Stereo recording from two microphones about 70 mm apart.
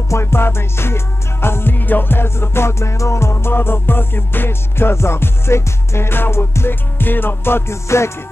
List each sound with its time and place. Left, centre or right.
0.1 s music: left